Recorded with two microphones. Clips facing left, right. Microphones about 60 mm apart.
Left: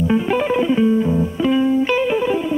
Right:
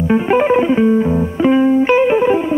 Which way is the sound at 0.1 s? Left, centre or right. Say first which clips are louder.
Right 8 dB; right.